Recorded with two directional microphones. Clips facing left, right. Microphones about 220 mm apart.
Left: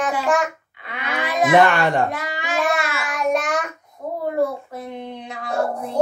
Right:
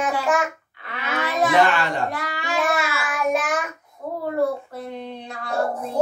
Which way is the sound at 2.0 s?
20° left (ahead or behind).